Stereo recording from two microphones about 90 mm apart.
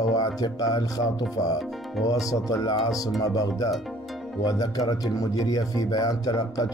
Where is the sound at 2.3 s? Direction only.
40° left (ahead or behind).